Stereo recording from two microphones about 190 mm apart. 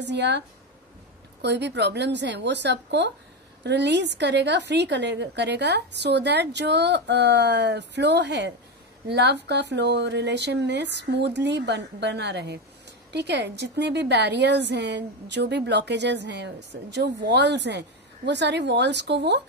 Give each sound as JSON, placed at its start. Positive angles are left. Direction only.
{"t": 0.0, "sound": "a woman's voice", "side_deg": -65}
{"t": 1.4, "sound": "a woman's voice", "side_deg": -65}